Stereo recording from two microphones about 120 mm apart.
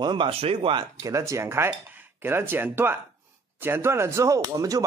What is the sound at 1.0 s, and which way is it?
Speech, 25° right (ahead or behind).